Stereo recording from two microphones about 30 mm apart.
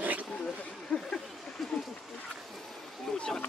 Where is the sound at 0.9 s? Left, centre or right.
Left.